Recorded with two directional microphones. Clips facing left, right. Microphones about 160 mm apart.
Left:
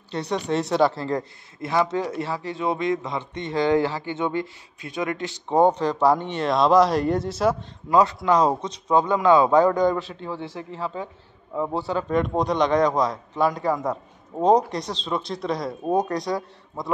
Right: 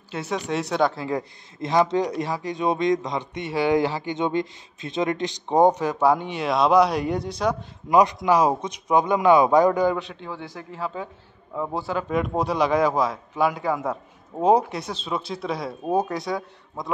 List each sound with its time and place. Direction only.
0.1 s speech: 5° right (ahead or behind)
1.6 s a man's voice: 20° right (ahead or behind); by 7.5 s 5° left (ahead or behind)
7.9 s a man's voice: 15° right (ahead or behind); by 10.4 s centre (ahead or behind)
11.7 s speech: 5° right (ahead or behind)